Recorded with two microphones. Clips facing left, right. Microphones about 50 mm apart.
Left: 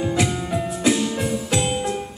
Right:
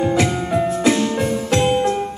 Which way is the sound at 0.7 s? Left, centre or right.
Centre.